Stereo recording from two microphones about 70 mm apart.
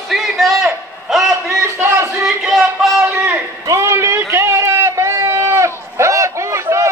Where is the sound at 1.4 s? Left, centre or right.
Right.